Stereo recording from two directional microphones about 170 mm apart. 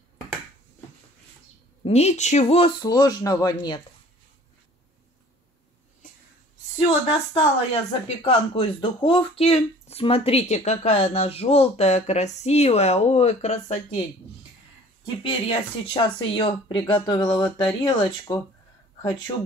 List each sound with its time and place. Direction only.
1.9 s speech: 40° left (ahead or behind); by 3.8 s 25° left (ahead or behind)
7.3 s speech: 35° left (ahead or behind)
15.2 s speech: 30° left (ahead or behind)